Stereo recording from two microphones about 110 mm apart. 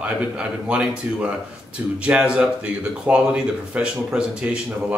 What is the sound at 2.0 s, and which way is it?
Speech, 10° right (ahead or behind).